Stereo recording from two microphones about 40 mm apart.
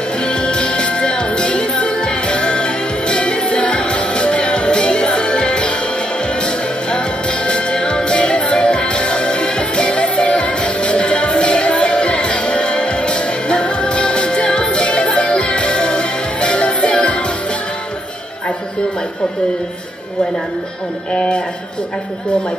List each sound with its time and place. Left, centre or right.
0.2 s music: left
7.4 s music: left
21.1 s a sound: left